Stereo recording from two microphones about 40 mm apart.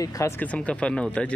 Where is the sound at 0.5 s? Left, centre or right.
Left.